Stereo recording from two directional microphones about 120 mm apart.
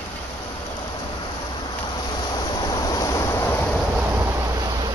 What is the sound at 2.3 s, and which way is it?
Vehicle, 30° left (ahead or behind).